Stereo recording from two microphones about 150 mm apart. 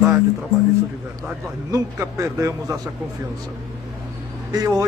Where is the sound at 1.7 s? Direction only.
20° right (ahead or behind).